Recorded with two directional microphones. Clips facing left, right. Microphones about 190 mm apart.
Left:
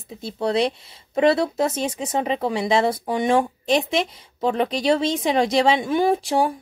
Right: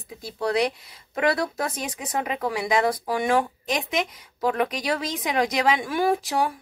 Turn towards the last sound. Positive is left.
turn(degrees=30)  # may be behind; listen again after turning